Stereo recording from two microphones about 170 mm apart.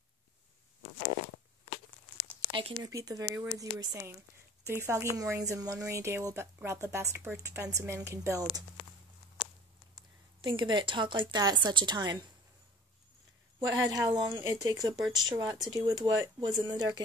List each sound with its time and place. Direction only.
2.5 s a woman's voice: 25° right (ahead or behind)
8.8 s a sound: 30° left (ahead or behind)
10.4 s a woman's voice: 30° right (ahead or behind)
13.6 s a woman's voice: 20° right (ahead or behind)